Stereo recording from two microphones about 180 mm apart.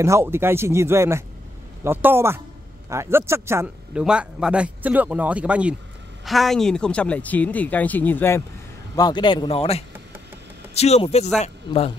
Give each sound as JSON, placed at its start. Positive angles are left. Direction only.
{"t": 0.0, "sound": "speech", "side_deg": -15}
{"t": 8.9, "sound": "a man's voice", "side_deg": 25}